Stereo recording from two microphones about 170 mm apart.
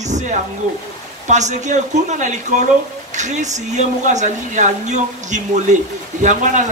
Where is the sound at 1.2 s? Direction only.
45° right (ahead or behind).